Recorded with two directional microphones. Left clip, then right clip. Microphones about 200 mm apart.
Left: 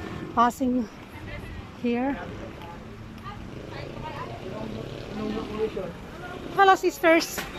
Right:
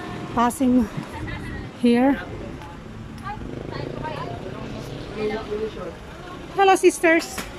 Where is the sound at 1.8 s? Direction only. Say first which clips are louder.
Right 8 dB; 20° right (ahead or behind).